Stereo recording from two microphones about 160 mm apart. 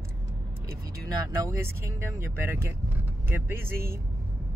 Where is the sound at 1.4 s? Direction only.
15° right (ahead or behind).